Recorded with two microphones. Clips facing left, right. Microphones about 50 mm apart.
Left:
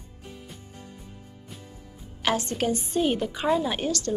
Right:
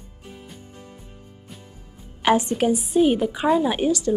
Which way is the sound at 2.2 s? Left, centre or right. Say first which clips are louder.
Right 7 dB; centre.